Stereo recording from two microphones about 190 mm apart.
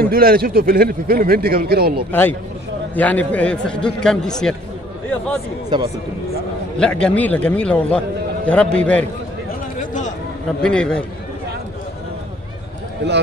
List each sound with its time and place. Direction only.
0.0 s a man's voice: 50° right (ahead or behind)
3.0 s a man's voice: 10° left (ahead or behind)
6.8 s a man's voice: 5° left (ahead or behind)
9.8 s a sound: 40° left (ahead or behind)
10.6 s a man's voice: 5° left (ahead or behind)
13.0 s a man's voice: 60° right (ahead or behind)